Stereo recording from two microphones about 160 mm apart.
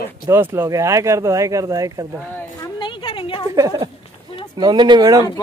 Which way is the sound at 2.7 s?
30° left (ahead or behind).